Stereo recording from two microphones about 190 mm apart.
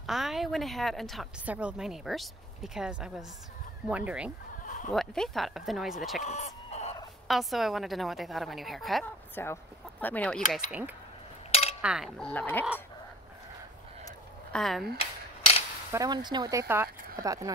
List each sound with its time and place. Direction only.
0.0 s speech: centre (ahead or behind)
4.6 s a sound: 40° left (ahead or behind)
4.9 s speech: centre (ahead or behind)
6.2 s chicken: 35° left (ahead or behind)
7.2 s speech: centre (ahead or behind)
9.3 s speech: 10° left (ahead or behind)
10.5 s speech: 5° right (ahead or behind); by 12.6 s 10° left (ahead or behind)
14.5 s speech: centre (ahead or behind)
15.9 s speech: 20° right (ahead or behind)